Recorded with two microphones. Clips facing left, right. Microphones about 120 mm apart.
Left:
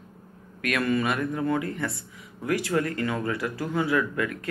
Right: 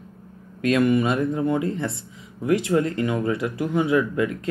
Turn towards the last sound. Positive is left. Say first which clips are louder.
# right 5 dB
turn(degrees=-20)  # may be behind; listen again after turning